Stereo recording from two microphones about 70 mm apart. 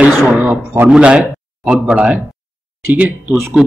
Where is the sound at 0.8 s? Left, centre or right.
Centre.